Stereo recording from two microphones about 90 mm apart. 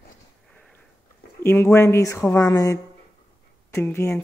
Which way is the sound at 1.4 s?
25° left (ahead or behind).